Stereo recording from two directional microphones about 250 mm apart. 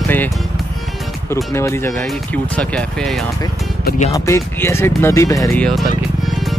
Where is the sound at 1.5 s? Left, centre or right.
Centre.